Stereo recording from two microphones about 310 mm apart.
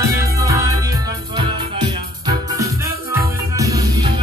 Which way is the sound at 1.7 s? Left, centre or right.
Centre.